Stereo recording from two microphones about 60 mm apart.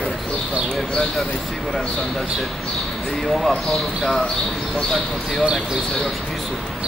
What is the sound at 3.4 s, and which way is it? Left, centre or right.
Speech, centre.